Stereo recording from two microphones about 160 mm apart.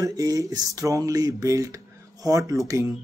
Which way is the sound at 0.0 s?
20° right (ahead or behind).